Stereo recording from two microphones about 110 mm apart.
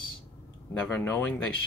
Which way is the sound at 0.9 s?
15° left (ahead or behind).